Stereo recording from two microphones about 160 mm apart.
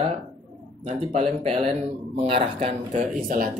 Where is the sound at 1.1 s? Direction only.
35° right (ahead or behind).